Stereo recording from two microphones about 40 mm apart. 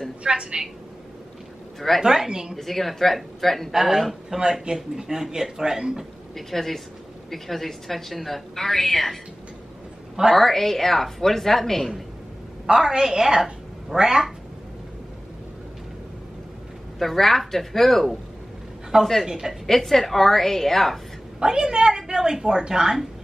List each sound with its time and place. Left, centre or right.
0.2 s a woman's voice: right
2.0 s speech: centre
2.5 s speech: centre
3.7 s speech: centre
4.4 s speech: centre
6.3 s a woman's voice: centre
10.3 s a woman's voice: centre
12.6 s a woman's voice: centre
17.0 s speech: centre
19.2 s speech: centre
19.6 s a woman's voice: centre
21.4 s speech: centre